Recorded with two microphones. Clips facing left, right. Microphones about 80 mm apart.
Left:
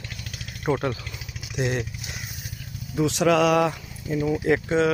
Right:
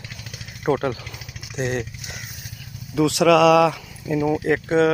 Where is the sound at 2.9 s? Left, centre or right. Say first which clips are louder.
Right 4 dB; right.